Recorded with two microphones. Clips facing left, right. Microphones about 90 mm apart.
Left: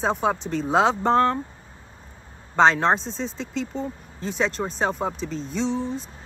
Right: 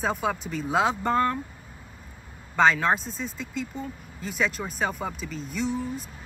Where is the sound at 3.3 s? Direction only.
50° right (ahead or behind).